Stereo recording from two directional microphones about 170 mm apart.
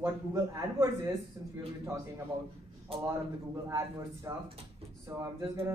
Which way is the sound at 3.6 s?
20° right (ahead or behind).